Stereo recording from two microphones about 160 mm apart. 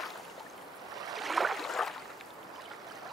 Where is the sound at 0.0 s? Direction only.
Centre (ahead or behind).